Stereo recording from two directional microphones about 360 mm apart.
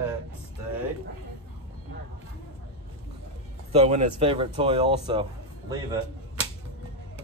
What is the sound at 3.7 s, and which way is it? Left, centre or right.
Speech, centre.